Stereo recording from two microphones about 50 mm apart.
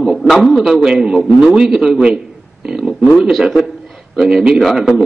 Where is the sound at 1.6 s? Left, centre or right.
Centre.